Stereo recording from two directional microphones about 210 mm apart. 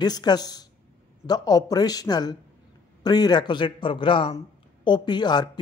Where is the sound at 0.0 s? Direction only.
20° left (ahead or behind).